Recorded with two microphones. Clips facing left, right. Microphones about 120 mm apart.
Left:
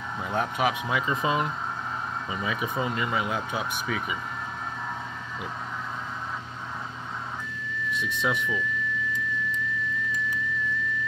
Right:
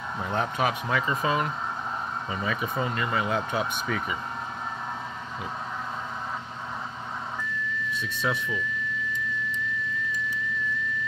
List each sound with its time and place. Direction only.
0.2 s speech: 5° left (ahead or behind)
8.0 s speech: 15° left (ahead or behind)